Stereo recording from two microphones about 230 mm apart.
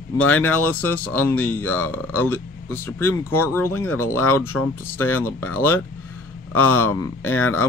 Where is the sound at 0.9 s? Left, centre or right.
Centre.